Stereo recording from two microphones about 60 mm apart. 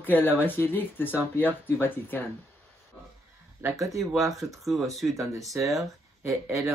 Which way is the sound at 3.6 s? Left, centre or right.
Right.